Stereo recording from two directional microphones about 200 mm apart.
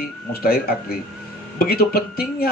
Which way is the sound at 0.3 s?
50° left (ahead or behind).